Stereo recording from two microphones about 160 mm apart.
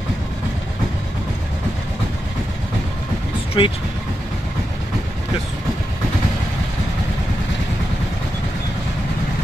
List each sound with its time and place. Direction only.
3.6 s speech: 30° left (ahead or behind)